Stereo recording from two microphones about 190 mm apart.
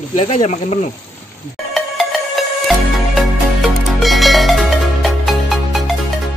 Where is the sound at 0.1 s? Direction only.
35° left (ahead or behind).